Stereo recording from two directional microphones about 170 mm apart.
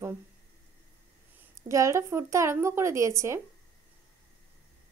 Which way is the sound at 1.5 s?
20° right (ahead or behind).